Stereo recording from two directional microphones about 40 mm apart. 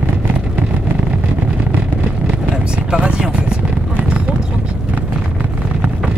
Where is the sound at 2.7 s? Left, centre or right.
Right.